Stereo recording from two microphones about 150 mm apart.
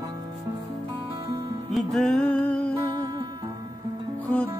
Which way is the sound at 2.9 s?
25° right (ahead or behind).